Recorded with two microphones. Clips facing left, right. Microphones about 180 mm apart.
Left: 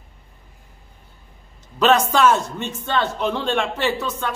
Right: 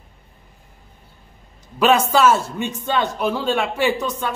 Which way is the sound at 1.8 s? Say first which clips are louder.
Right 1 dB; 10° right (ahead or behind).